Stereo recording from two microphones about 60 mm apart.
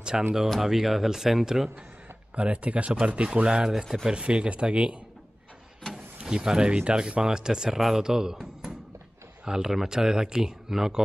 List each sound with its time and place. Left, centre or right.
0.1 s speech: centre
2.3 s speech: right; by 4.1 s centre
4.1 s speech: centre
6.2 s speech: centre